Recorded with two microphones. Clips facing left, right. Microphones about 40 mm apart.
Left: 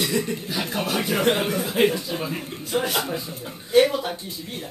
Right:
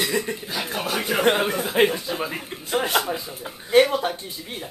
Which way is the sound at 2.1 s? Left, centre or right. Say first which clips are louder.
Even; centre.